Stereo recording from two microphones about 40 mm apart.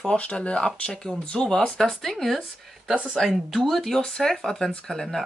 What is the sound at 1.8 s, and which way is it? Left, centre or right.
Speech, centre.